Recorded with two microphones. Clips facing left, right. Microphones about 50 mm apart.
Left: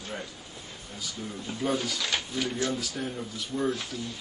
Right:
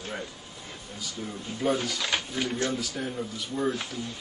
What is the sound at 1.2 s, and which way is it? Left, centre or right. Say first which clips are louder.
Speech: right 2 dB; centre.